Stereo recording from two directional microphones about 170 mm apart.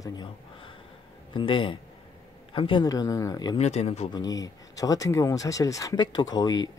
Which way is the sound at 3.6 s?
40° left (ahead or behind).